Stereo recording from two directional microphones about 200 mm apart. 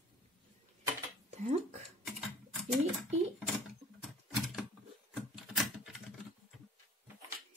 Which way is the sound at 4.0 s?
Centre (ahead or behind).